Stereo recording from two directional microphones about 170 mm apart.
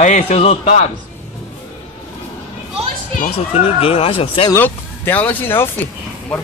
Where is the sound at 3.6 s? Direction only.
35° left (ahead or behind).